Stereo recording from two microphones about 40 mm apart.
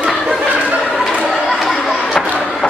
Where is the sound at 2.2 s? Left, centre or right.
Centre.